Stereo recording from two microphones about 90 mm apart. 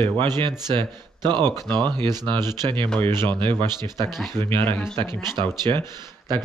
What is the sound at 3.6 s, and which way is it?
Speech, 55° right (ahead or behind).